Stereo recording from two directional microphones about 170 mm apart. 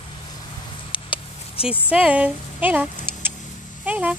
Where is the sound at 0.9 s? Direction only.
30° left (ahead or behind).